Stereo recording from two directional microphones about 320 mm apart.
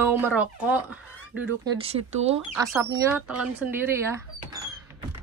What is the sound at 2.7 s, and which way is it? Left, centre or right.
Speech, centre.